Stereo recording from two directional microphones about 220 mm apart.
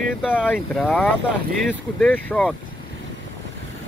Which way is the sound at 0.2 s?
Centre (ahead or behind).